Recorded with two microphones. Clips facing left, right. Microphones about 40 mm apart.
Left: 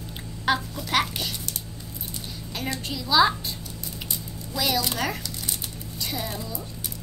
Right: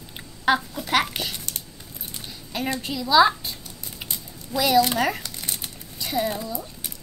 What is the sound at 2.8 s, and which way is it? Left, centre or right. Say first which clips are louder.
Speech: right 3 dB; centre.